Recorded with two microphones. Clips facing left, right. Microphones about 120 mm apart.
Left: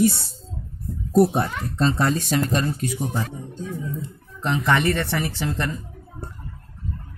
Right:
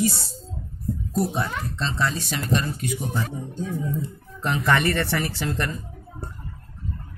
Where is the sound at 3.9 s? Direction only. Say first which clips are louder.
Right 3 dB; 20° left (ahead or behind).